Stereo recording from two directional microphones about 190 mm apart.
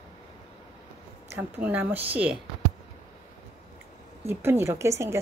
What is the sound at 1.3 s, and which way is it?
A woman's voice, 10° right (ahead or behind).